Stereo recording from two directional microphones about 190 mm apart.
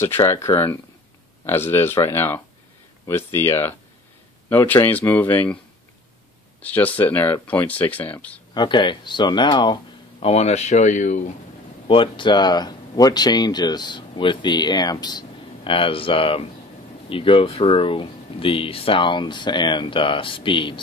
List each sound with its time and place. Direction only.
0.0 s speech: 15° left (ahead or behind)
6.6 s speech: 10° left (ahead or behind)
8.5 s speech: 25° left (ahead or behind)
10.2 s speech: 35° left (ahead or behind)
11.9 s speech: 25° left (ahead or behind)